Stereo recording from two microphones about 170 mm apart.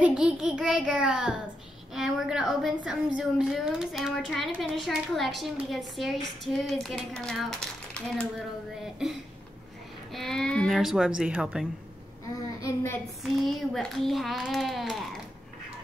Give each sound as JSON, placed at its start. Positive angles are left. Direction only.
{"t": 0.0, "sound": "speech", "side_deg": -5}
{"t": 10.1, "sound": "speech", "side_deg": 5}
{"t": 12.4, "sound": "a child's voice", "side_deg": 20}
{"t": 13.2, "sound": "speech", "side_deg": 0}